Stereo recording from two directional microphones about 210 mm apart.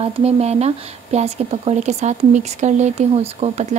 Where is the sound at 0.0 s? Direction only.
30° right (ahead or behind).